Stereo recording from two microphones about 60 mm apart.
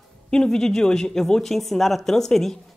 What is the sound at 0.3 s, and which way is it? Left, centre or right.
Speech, centre.